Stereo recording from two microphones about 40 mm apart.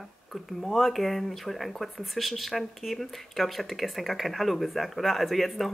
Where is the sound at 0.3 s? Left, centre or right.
Centre.